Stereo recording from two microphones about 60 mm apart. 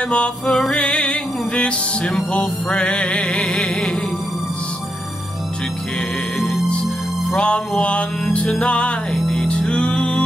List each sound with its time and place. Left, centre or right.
0.1 s music: centre
7.3 s music: centre
9.1 s music: centre
9.5 s music: centre